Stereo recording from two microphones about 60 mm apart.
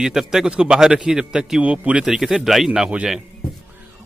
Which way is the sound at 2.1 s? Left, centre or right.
Centre.